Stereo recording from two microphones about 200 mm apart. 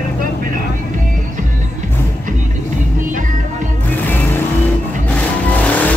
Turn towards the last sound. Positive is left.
turn(degrees=5)  # may be behind; listen again after turning